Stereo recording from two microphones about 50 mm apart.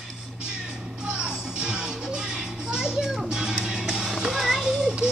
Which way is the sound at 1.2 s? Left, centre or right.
Centre.